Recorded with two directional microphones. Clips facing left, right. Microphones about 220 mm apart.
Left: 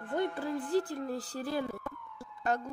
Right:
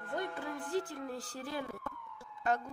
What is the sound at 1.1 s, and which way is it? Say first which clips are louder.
Speech: left 6 dB; 35° left (ahead or behind).